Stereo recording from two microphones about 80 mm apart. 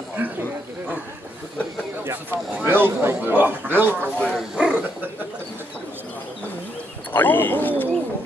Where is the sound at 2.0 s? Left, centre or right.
Right.